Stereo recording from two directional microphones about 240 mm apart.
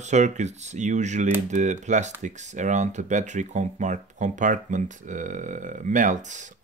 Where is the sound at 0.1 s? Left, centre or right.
Right.